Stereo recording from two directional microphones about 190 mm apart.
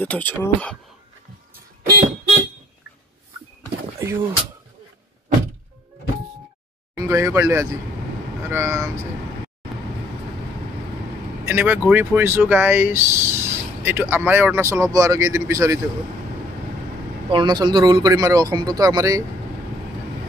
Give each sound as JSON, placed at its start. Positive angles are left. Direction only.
{"t": 0.0, "sound": "speech", "side_deg": 10}
{"t": 1.8, "sound": "car alarm", "side_deg": -50}
{"t": 4.0, "sound": "speech", "side_deg": -15}
{"t": 7.0, "sound": "speech", "side_deg": -15}
{"t": 11.4, "sound": "speech", "side_deg": -10}
{"t": 17.3, "sound": "speech", "side_deg": -25}